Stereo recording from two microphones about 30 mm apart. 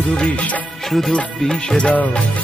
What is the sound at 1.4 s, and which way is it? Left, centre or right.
Music, left.